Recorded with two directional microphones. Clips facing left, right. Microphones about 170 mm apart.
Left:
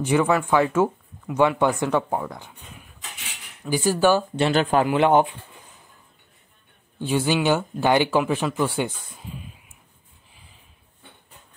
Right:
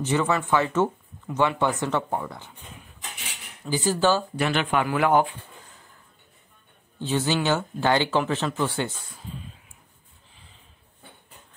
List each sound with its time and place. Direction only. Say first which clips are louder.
0.0 s speech: left 4 dB; 10° left (ahead or behind)
3.6 s speech: left 3 dB; 15° left (ahead or behind)
4.4 s speech: left 4 dB; 35° left (ahead or behind)
4.8 s speech: left 3 dB; 25° left (ahead or behind)
7.0 s speech: left 3 dB; 10° left (ahead or behind)